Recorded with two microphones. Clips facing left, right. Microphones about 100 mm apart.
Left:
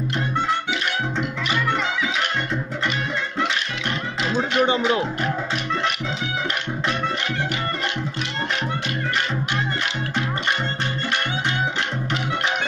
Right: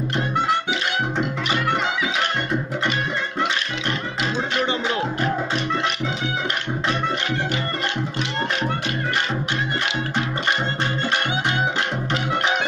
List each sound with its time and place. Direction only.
4.6 s music: 20° left (ahead or behind)